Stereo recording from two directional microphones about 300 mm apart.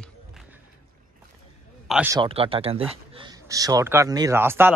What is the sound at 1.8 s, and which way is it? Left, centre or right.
Speech, centre.